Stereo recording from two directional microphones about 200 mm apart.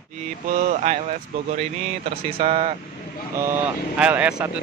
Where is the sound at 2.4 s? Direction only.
35° right (ahead or behind).